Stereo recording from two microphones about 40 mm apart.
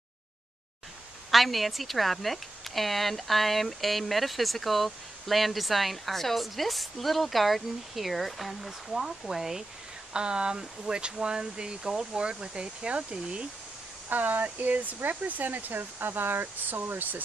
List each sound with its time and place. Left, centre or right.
1.3 s a woman's voice: centre
10.1 s speech: right
14.0 s speech: right